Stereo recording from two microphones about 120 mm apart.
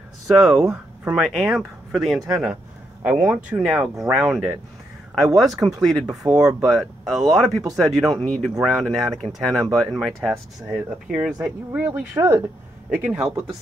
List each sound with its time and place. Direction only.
0.5 s speech: 5° right (ahead or behind)
12.2 s speech: 30° right (ahead or behind)
12.9 s speech: 10° right (ahead or behind)